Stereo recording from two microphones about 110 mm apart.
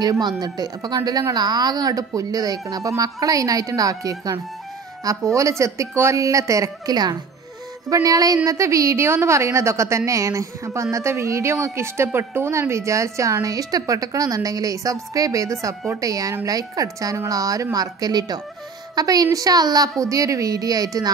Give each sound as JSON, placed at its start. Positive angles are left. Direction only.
{"t": 0.0, "sound": "a woman's voice", "side_deg": -40}